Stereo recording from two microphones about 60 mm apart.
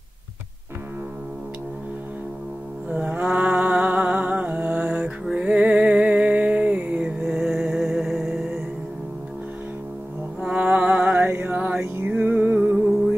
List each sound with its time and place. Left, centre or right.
2.9 s music: right
5.3 s a sound: right
7.2 s music: centre
10.4 s mantra: right
12.0 s music: right